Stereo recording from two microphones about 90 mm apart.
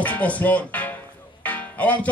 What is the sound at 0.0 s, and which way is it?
Music, 15° left (ahead or behind).